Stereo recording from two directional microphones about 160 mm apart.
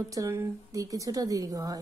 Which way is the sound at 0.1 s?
20° right (ahead or behind).